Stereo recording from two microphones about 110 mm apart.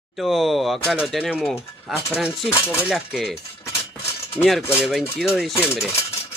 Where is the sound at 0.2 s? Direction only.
Centre (ahead or behind).